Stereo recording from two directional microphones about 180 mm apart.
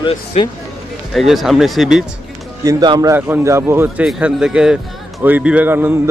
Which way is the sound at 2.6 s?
20° right (ahead or behind).